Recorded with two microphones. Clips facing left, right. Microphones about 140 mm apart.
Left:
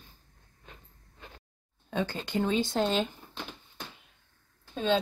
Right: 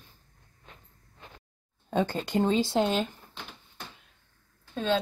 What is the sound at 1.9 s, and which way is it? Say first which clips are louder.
Speech: right 4 dB; 40° right (ahead or behind).